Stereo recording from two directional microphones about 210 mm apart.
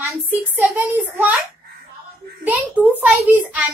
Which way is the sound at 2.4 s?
5° right (ahead or behind).